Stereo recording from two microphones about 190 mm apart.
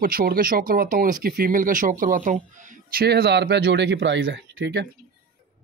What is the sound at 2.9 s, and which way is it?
Speech, 55° right (ahead or behind).